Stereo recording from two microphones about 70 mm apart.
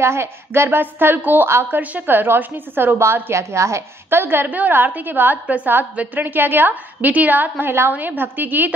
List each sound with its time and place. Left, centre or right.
0.0 s a woman's voice: right
1.8 s a woman's voice: right